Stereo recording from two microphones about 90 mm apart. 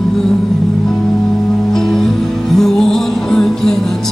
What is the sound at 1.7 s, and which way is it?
Music, 5° left (ahead or behind).